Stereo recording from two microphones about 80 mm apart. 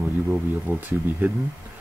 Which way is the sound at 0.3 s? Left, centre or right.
Right.